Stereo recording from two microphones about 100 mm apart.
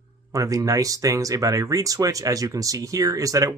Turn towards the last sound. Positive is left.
turn(degrees=-35)  # may be behind; listen again after turning